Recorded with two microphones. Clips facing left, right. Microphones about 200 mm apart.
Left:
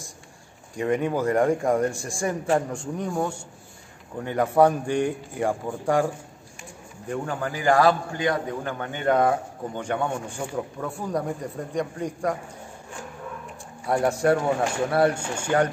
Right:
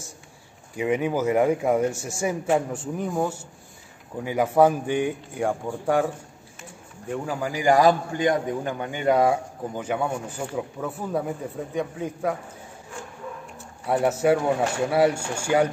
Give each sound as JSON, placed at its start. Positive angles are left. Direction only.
{"t": 0.7, "sound": "a man's voice", "side_deg": -5}
{"t": 13.8, "sound": "a man's voice", "side_deg": -5}